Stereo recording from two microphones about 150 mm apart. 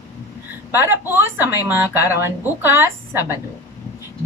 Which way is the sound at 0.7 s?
15° right (ahead or behind).